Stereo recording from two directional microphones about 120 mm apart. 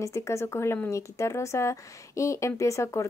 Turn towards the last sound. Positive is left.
turn(degrees=25)  # may be behind; listen again after turning